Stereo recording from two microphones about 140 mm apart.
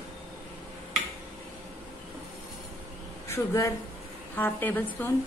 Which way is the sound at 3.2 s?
20° left (ahead or behind).